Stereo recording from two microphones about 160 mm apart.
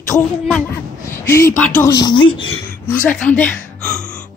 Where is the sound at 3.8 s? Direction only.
5° left (ahead or behind).